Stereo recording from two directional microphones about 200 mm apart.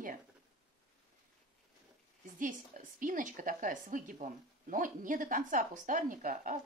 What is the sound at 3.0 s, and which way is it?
Speech, 40° right (ahead or behind).